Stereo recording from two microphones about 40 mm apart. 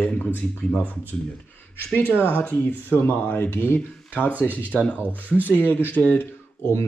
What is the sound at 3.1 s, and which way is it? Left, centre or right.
Speech, left.